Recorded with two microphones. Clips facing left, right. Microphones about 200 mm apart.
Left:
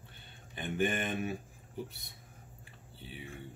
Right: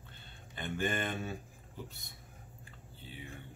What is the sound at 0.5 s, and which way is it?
Speech, 15° left (ahead or behind).